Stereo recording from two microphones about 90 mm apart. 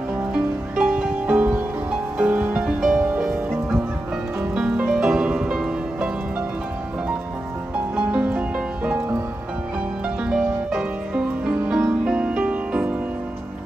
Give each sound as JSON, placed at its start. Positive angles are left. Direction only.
{"t": 0.3, "sound": "music", "side_deg": -10}
{"t": 2.8, "sound": "music", "side_deg": -5}
{"t": 7.9, "sound": "music", "side_deg": -15}
{"t": 10.2, "sound": "music", "side_deg": -5}